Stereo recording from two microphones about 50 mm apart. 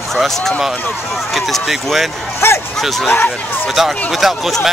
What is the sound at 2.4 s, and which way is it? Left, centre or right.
Speech, left.